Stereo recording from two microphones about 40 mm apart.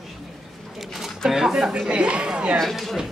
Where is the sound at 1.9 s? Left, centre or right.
Right.